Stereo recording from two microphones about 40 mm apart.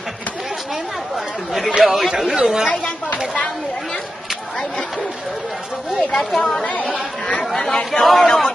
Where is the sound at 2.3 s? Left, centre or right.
Centre.